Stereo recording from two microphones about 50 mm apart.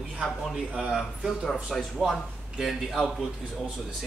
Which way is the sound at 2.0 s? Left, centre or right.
Centre.